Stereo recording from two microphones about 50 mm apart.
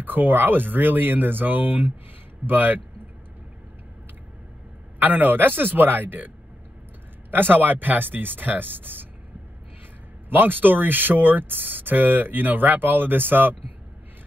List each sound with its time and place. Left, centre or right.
0.0 s speech: right
4.9 s speech: right
10.3 s speech: right